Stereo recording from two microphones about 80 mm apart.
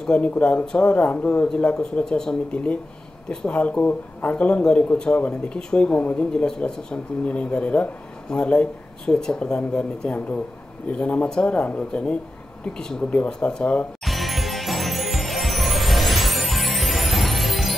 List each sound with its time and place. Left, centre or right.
0.0 s speech: centre
14.0 s music: centre